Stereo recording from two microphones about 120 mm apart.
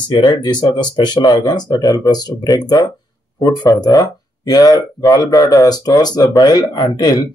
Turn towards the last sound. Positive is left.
turn(degrees=35)  # may be behind; listen again after turning